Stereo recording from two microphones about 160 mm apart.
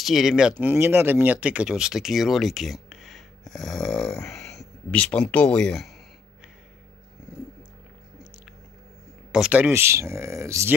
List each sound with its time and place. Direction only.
0.0 s speech: centre (ahead or behind)
9.3 s speech: 5° right (ahead or behind)